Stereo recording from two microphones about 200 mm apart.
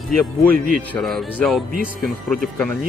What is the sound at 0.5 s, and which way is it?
Speech, 45° right (ahead or behind).